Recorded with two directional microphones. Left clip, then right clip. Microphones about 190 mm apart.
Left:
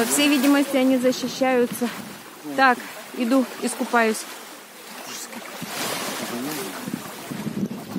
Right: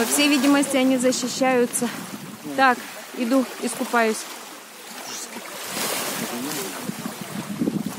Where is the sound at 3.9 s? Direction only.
25° left (ahead or behind).